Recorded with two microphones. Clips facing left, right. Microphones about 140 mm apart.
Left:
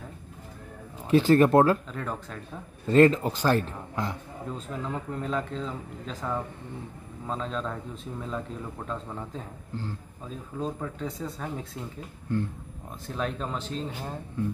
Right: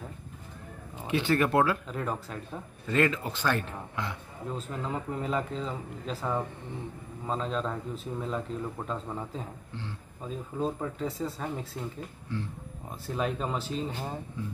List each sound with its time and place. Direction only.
1.0 s speech: 40° left (ahead or behind)
1.9 s speech: 5° right (ahead or behind)
2.9 s speech: 35° left (ahead or behind)
4.6 s speech: centre (ahead or behind)
10.6 s speech: 5° right (ahead or behind)
12.3 s speech: 50° left (ahead or behind)
13.0 s speech: 5° right (ahead or behind)